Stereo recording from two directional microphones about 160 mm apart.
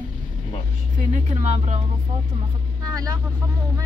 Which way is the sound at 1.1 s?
45° right (ahead or behind).